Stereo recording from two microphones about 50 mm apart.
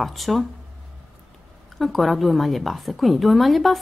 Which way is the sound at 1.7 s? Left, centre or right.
Centre.